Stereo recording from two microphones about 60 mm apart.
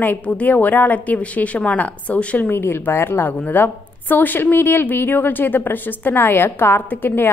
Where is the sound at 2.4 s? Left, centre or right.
Left.